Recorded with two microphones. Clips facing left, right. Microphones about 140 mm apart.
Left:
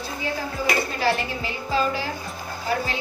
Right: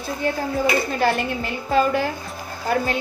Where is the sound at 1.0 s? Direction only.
55° right (ahead or behind).